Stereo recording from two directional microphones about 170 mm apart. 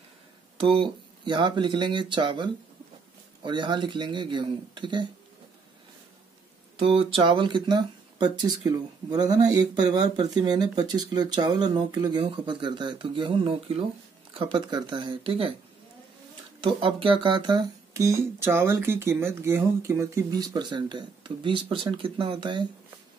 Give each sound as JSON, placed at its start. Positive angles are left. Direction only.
{"t": 0.6, "sound": "speech", "side_deg": -30}
{"t": 6.8, "sound": "speech", "side_deg": -30}
{"t": 16.6, "sound": "speech", "side_deg": -30}